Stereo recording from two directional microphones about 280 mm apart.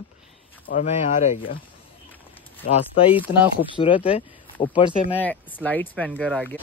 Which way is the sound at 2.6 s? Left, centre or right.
Left.